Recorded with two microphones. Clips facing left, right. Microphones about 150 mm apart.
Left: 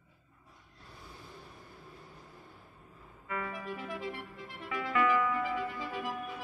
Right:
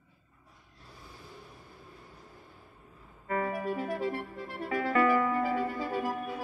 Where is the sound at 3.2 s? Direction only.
45° right (ahead or behind).